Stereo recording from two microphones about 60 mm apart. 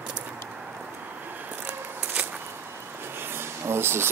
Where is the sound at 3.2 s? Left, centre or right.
Right.